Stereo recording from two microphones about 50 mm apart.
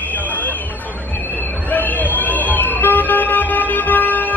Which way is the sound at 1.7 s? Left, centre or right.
Left.